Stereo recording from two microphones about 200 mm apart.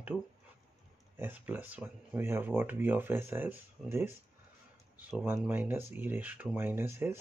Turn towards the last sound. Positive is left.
turn(degrees=-10)  # may be behind; listen again after turning